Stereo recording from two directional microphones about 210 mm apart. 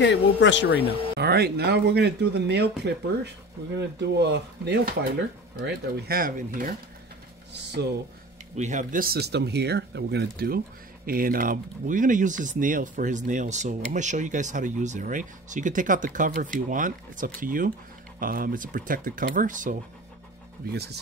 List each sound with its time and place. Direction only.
0.0 s speech: 60° left (ahead or behind)
1.1 s speech: 50° right (ahead or behind)
4.0 s speech: 55° right (ahead or behind)
8.5 s speech: 35° right (ahead or behind)
20.7 s speech: 50° right (ahead or behind)